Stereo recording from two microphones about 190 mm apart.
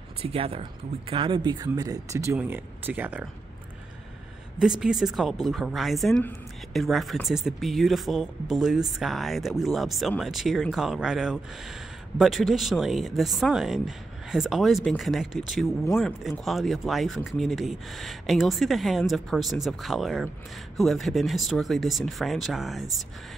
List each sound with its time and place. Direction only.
0.2 s speech: 30° right (ahead or behind); by 3.3 s 5° right (ahead or behind)
4.6 s speech: 5° right (ahead or behind)